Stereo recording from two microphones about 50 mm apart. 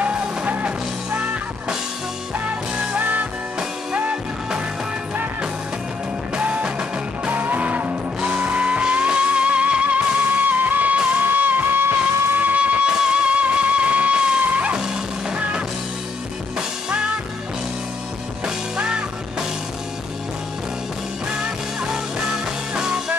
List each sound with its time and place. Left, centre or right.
0.5 s music: right
3.0 s music: right
6.3 s music: right
12.4 s music: right
14.7 s music: centre
15.3 s music: right
18.8 s music: centre
21.3 s music: centre